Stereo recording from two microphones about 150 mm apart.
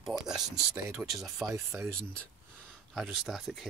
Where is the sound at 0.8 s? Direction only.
20° right (ahead or behind).